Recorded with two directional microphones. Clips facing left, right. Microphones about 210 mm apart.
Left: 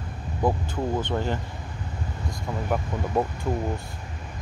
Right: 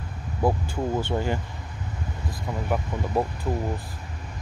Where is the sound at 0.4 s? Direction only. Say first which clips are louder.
Right 1 dB; 10° right (ahead or behind).